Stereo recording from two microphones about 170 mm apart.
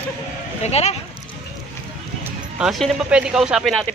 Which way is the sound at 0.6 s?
40° left (ahead or behind).